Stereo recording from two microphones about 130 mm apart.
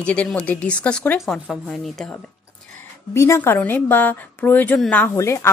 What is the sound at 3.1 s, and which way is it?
A woman's voice, 20° left (ahead or behind).